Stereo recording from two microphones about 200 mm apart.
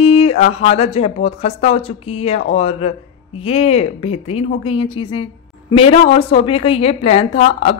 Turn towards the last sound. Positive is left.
turn(degrees=30)  # may be behind; listen again after turning